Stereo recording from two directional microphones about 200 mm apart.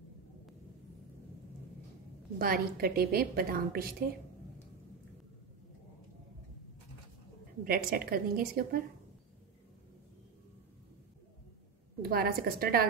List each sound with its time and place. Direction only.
2.3 s a woman's voice: 45° right (ahead or behind)
7.6 s a woman's voice: 45° right (ahead or behind)
12.0 s a woman's voice: 50° right (ahead or behind)